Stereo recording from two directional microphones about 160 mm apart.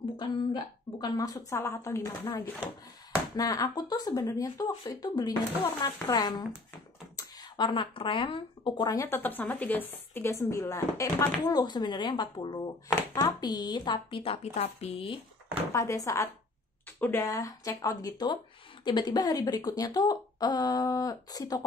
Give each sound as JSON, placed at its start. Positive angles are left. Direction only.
{"t": 0.2, "sound": "a woman's voice", "side_deg": 30}
{"t": 15.7, "sound": "speech", "side_deg": 20}